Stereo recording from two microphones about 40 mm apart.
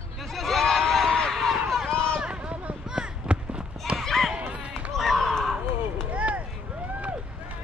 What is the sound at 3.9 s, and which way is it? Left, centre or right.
Basketball bounce, right.